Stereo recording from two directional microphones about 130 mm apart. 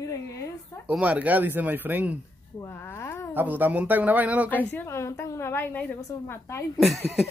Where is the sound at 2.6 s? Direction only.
20° left (ahead or behind).